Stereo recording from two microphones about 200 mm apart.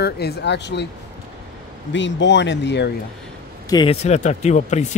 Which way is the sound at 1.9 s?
65° left (ahead or behind).